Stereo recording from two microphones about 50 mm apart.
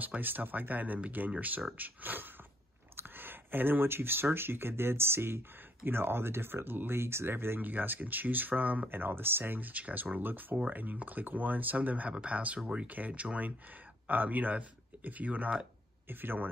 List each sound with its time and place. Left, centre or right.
0.0 s speech: right
16.1 s speech: right